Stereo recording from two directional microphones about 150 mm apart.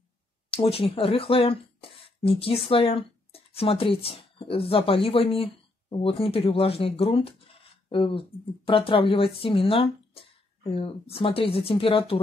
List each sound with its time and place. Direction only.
0.5 s speech: 40° left (ahead or behind)